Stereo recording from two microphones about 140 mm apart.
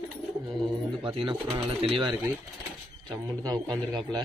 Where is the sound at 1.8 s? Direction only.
40° right (ahead or behind).